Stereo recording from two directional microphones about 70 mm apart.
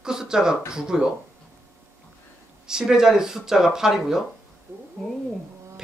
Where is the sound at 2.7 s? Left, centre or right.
Centre.